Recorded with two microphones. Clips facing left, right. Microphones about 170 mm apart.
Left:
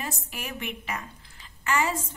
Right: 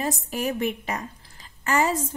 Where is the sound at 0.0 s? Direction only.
35° right (ahead or behind).